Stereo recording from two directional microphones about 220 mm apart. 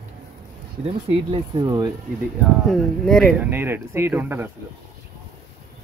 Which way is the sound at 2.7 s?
Centre (ahead or behind).